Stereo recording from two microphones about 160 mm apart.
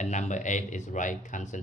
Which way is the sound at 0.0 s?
50° left (ahead or behind).